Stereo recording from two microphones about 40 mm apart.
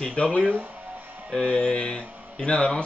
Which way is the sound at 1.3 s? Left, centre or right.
Left.